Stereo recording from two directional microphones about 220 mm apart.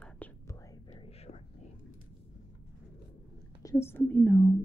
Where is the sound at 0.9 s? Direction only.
25° left (ahead or behind).